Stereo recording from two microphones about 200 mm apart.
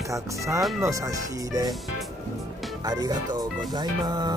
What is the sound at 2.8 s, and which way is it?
Speech, 20° right (ahead or behind).